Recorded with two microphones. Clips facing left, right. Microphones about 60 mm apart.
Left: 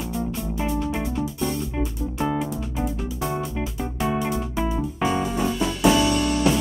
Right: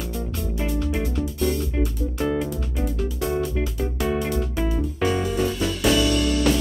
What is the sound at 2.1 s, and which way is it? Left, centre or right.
Music, centre.